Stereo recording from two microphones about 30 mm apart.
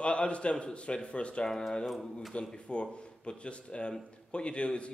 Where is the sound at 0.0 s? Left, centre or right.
Left.